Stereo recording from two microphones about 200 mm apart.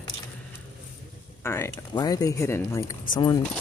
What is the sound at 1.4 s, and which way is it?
Speech, 15° left (ahead or behind).